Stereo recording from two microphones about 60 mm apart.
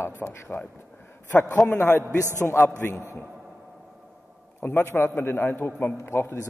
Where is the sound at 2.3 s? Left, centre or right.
Left.